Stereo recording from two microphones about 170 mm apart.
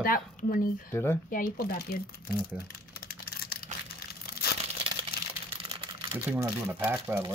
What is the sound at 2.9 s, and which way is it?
Computer keyboard, 65° left (ahead or behind).